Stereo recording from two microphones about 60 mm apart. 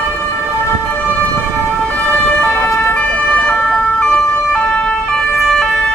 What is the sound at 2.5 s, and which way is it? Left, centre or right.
Ambulance, left.